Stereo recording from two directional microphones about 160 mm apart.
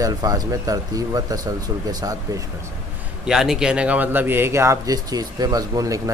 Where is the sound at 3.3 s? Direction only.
5° right (ahead or behind).